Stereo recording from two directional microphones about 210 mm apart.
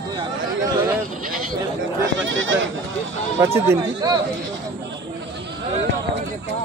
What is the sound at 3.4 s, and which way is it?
Speech, 15° right (ahead or behind).